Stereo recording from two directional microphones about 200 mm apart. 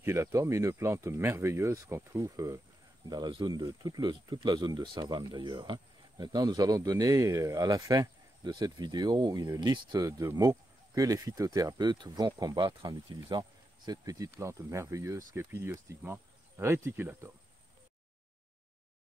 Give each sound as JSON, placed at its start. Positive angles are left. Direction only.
{"t": 0.0, "sound": "speech", "side_deg": -15}